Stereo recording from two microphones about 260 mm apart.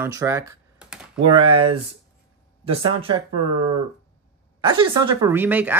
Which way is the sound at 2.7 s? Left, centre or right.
Right.